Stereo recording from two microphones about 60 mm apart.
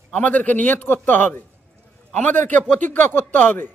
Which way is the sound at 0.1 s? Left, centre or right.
Left.